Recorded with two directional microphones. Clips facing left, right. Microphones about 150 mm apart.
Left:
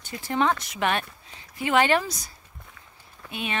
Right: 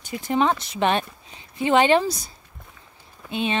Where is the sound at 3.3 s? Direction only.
25° right (ahead or behind).